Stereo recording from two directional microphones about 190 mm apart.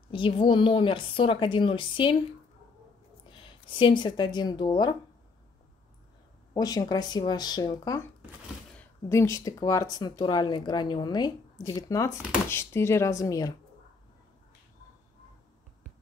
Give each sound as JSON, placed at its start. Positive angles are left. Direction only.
{"t": 0.1, "sound": "speech", "side_deg": 25}
{"t": 3.3, "sound": "speech", "side_deg": 25}
{"t": 6.5, "sound": "speech", "side_deg": 20}